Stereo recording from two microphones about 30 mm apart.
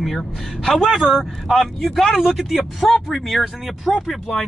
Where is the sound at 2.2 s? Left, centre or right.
Centre.